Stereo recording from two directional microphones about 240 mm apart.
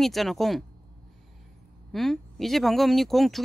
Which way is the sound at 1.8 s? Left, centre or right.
Centre.